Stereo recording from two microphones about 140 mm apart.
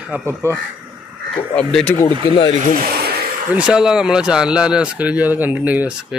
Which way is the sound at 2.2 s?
35° left (ahead or behind).